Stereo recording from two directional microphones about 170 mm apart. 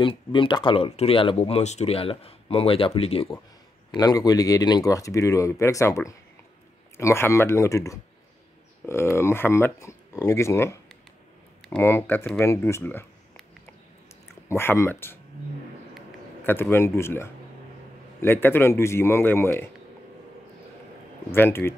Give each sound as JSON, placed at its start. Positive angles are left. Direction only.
{"t": 0.0, "sound": "speech", "side_deg": 30}
{"t": 3.9, "sound": "speech", "side_deg": 20}
{"t": 11.8, "sound": "speech", "side_deg": 15}
{"t": 14.5, "sound": "speech", "side_deg": 15}
{"t": 16.4, "sound": "speech", "side_deg": 15}
{"t": 21.3, "sound": "speech", "side_deg": 15}